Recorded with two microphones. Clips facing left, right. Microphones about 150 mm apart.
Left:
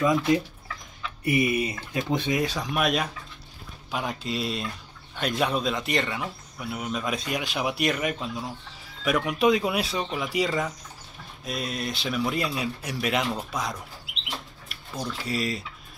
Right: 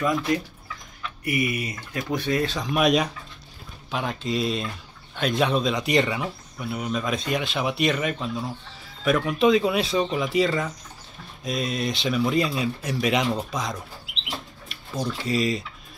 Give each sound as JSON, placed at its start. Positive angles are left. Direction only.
{"t": 0.0, "sound": "speech", "side_deg": 20}
{"t": 15.2, "sound": "speech", "side_deg": 5}